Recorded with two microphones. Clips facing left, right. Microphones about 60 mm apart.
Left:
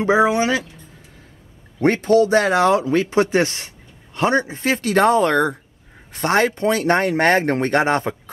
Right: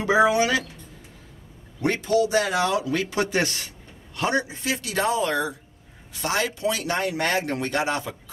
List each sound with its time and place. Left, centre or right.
0.0 s speech: left
1.8 s speech: left